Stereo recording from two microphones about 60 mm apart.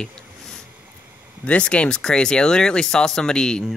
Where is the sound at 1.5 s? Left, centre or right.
Centre.